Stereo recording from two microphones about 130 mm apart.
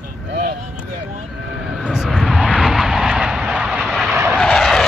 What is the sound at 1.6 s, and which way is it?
Vehicle, 5° right (ahead or behind).